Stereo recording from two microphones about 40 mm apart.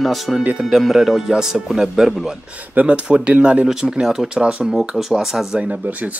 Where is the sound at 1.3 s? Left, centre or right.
Centre.